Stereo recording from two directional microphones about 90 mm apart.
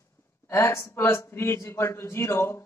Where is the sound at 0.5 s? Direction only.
30° left (ahead or behind).